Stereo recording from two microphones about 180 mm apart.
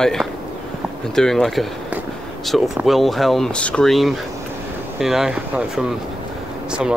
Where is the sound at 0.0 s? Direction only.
Centre (ahead or behind).